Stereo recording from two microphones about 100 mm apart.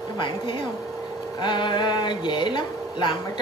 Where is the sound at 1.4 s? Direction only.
50° left (ahead or behind).